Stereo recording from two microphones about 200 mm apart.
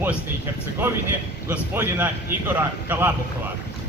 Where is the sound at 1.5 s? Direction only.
10° right (ahead or behind).